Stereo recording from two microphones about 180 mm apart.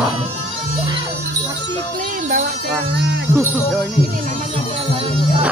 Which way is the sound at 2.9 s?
80° right.